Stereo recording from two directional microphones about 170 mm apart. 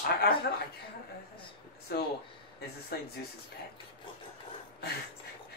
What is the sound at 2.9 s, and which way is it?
Speech, 65° left (ahead or behind).